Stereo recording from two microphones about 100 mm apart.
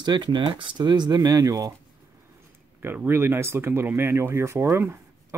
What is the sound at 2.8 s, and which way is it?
Speech, 20° right (ahead or behind).